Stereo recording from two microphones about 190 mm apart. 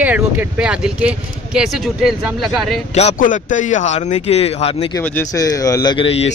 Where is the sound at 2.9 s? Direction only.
40° left (ahead or behind).